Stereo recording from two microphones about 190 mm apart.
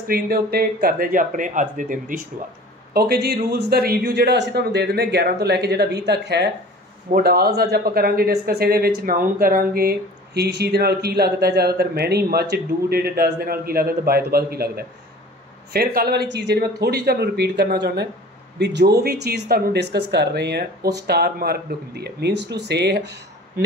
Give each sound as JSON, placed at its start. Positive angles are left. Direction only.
{"t": 0.1, "sound": "speech", "side_deg": -50}
{"t": 2.9, "sound": "speech", "side_deg": -55}